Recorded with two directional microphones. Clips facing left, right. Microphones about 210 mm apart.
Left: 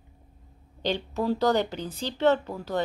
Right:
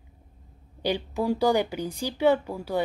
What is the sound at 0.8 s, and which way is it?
Speech, 10° right (ahead or behind).